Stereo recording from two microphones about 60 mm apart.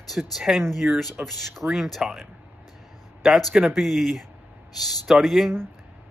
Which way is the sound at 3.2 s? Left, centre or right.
Centre.